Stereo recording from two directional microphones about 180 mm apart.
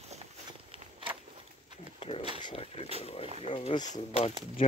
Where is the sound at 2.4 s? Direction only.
30° left (ahead or behind).